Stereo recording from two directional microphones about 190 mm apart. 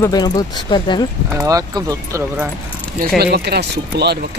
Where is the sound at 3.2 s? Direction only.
60° right (ahead or behind).